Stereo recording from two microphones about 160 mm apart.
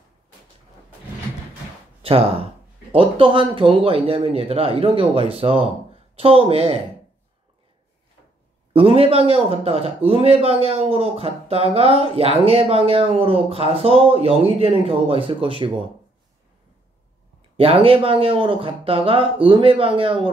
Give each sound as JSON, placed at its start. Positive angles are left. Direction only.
{"t": 2.0, "sound": "a man's voice", "side_deg": -35}
{"t": 8.7, "sound": "a man's voice", "side_deg": -35}
{"t": 17.6, "sound": "a man's voice", "side_deg": -35}